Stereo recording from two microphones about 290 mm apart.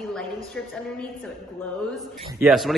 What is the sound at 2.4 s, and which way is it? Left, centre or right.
Speech, centre.